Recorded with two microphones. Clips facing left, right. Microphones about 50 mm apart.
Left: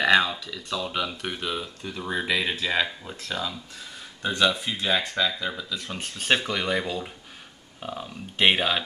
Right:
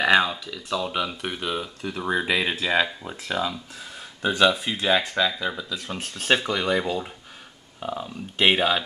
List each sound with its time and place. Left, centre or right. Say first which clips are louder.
0.0 s speech: right 1 dB; centre
2.0 s speech: right 3 dB; centre